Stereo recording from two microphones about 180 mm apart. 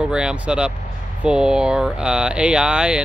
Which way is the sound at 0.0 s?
5° right (ahead or behind).